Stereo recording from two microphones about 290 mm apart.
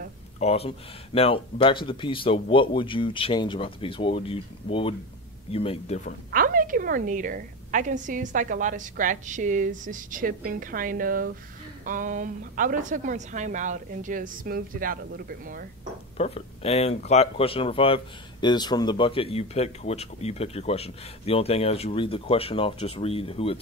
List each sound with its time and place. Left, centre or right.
0.4 s speech: left
6.3 s a woman's voice: right
16.2 s speech: left